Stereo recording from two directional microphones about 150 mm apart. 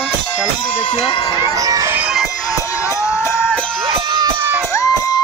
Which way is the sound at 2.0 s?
5° right (ahead or behind).